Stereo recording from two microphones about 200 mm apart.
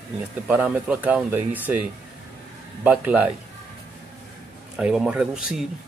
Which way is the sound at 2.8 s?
5° right (ahead or behind).